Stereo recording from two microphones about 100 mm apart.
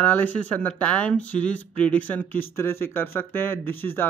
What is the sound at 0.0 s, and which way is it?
Speech, 15° left (ahead or behind).